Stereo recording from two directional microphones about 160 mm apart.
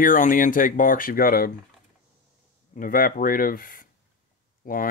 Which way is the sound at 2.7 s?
60° left (ahead or behind).